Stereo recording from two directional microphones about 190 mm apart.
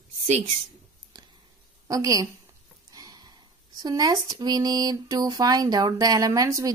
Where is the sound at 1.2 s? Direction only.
25° right (ahead or behind).